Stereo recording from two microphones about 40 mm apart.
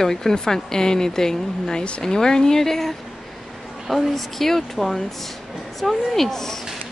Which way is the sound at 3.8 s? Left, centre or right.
Centre.